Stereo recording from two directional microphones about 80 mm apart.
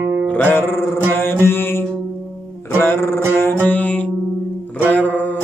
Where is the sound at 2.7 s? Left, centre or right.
Left.